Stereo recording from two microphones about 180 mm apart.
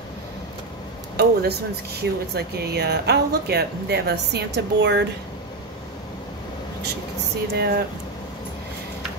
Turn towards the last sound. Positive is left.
turn(degrees=-60)  # may be behind; listen again after turning